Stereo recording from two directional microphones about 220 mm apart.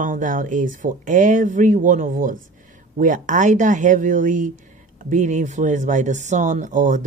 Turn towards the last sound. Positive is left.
turn(degrees=-35)  # may be behind; listen again after turning